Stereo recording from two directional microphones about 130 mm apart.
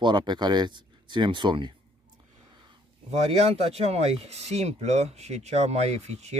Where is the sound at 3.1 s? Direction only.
55° right (ahead or behind).